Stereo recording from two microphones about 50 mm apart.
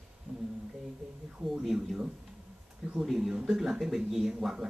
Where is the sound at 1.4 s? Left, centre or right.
Centre.